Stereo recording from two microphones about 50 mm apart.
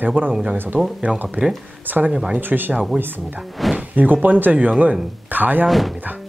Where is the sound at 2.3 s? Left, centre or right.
Right.